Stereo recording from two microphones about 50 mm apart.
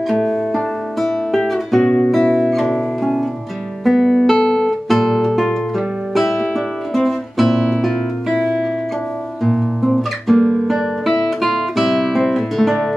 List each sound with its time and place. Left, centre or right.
1.0 s guitar: centre
3.8 s music: centre
9.4 s guitar: centre